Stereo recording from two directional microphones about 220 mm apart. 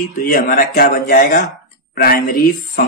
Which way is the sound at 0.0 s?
40° left (ahead or behind).